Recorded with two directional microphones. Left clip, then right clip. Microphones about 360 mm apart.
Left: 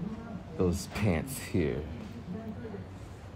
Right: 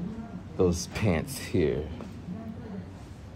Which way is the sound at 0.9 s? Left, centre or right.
Centre.